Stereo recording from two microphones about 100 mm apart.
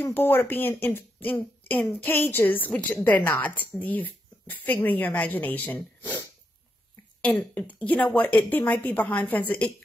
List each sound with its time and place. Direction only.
0.0 s speech: 20° left (ahead or behind)
7.5 s speech: 15° left (ahead or behind)